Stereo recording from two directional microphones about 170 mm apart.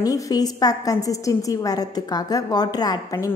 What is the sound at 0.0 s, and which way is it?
A woman's voice, 20° left (ahead or behind).